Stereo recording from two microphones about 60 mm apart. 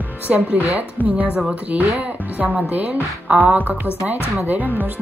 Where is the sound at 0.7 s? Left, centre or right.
Right.